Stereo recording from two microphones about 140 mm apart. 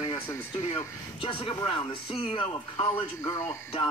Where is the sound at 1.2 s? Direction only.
40° left (ahead or behind).